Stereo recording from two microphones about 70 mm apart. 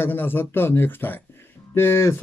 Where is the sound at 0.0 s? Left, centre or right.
Left.